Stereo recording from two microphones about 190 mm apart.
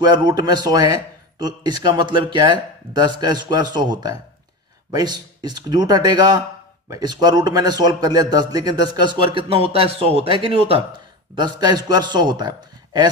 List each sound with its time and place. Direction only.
0.0 s a man's voice: 20° right (ahead or behind)